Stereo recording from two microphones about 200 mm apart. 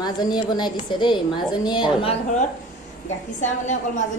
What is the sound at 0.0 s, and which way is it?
A woman's voice, 20° left (ahead or behind).